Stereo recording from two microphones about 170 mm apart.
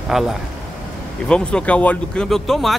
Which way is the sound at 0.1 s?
Centre (ahead or behind).